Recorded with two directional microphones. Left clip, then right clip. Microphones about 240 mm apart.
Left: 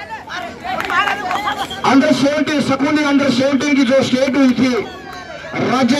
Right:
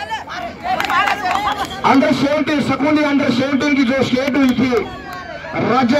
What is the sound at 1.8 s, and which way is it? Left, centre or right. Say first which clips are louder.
A man's voice: left 1 dB; left.